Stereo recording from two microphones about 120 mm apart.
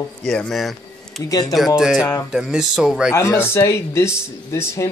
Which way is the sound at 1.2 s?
30° left (ahead or behind).